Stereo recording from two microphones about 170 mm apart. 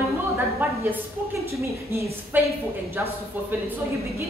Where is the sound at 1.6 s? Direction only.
15° right (ahead or behind).